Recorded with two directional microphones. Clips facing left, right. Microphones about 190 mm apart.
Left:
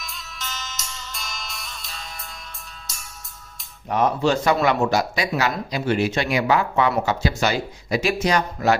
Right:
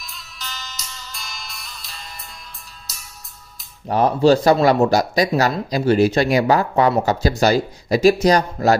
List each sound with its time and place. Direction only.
0.0 s music: centre (ahead or behind)
3.9 s speech: 35° right (ahead or behind)